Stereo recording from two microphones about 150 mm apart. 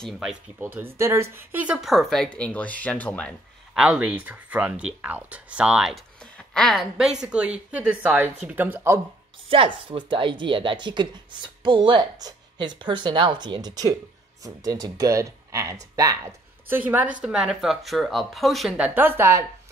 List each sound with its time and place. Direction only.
0.0 s speech: centre (ahead or behind)
0.6 s speech: 15° right (ahead or behind); by 3.3 s 10° left (ahead or behind)
3.7 s speech: 5° right (ahead or behind)
9.5 s a woman's voice: 35° right (ahead or behind); by 19.4 s 15° right (ahead or behind)